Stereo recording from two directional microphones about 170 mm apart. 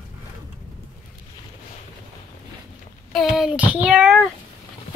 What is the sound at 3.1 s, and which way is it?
Speech, centre (ahead or behind).